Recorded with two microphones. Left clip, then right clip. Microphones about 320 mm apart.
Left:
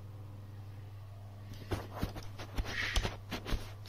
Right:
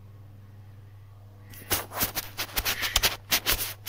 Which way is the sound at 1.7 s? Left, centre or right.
Right.